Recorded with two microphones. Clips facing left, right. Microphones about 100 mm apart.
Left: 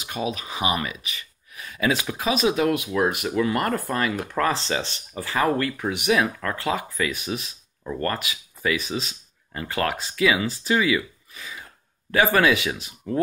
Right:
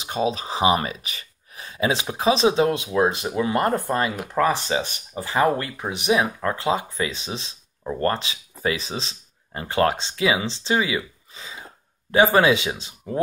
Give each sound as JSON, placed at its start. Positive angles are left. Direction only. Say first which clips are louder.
{"t": 0.0, "sound": "speech", "louder": "right 4 dB", "side_deg": -30}